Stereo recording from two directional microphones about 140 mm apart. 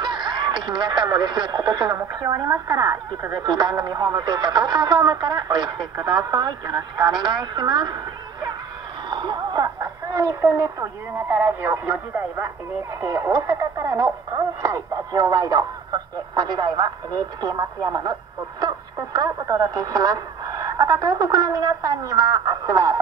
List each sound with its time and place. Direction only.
0.0 s speech: 35° right (ahead or behind)
19.1 s speech: 25° right (ahead or behind)